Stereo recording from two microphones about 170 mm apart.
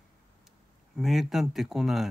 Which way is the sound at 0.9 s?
Centre (ahead or behind).